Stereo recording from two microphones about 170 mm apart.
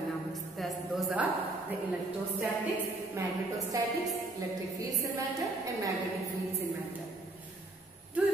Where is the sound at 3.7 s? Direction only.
20° right (ahead or behind).